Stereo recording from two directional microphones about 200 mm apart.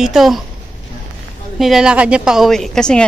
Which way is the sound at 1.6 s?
Centre (ahead or behind).